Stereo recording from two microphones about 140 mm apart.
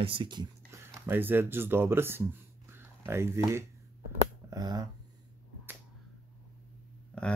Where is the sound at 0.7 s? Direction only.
15° right (ahead or behind).